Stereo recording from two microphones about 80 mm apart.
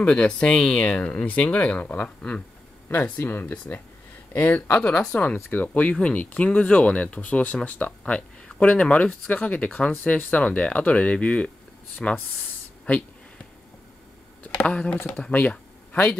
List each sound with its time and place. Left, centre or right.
0.0 s speech: centre
14.4 s speech: centre